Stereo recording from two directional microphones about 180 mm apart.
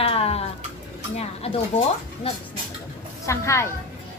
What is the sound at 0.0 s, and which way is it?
Bathtub, 35° left (ahead or behind).